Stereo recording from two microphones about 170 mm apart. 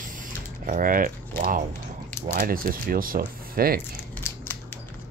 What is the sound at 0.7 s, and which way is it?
Speech, 55° right (ahead or behind).